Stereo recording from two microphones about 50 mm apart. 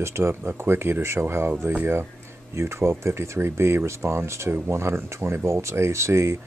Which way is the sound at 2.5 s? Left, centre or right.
Right.